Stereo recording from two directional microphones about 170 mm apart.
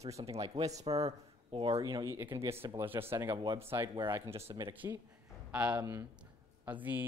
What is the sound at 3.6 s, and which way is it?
Speech, 15° right (ahead or behind).